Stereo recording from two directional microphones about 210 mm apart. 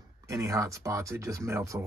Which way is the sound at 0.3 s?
15° right (ahead or behind).